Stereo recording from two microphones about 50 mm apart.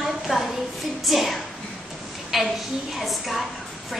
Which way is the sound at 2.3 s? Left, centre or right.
Centre.